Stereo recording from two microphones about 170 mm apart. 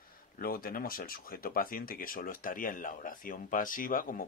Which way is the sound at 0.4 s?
60° left (ahead or behind).